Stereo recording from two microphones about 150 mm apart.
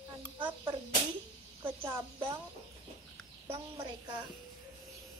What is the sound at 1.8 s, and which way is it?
Speech, 15° right (ahead or behind).